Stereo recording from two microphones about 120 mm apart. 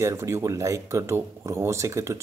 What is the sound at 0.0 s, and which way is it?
Speech, 25° right (ahead or behind).